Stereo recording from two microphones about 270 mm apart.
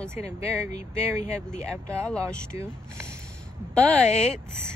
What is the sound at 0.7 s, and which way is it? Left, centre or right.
Speech, left.